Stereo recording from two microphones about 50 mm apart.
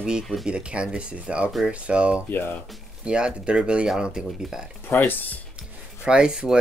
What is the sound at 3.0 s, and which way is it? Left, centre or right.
Speech, right.